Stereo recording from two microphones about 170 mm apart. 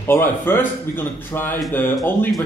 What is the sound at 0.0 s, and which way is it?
Speech, 15° left (ahead or behind).